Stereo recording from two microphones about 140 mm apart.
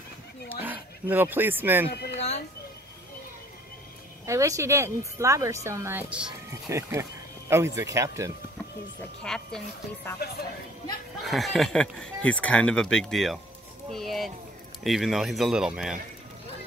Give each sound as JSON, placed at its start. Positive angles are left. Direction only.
{"t": 0.6, "sound": "speech", "side_deg": -15}
{"t": 2.1, "sound": "a sound", "side_deg": 50}
{"t": 4.3, "sound": "speech", "side_deg": -20}
{"t": 6.7, "sound": "speech", "side_deg": -20}
{"t": 9.2, "sound": "speech", "side_deg": 5}
{"t": 11.2, "sound": "speech", "side_deg": 0}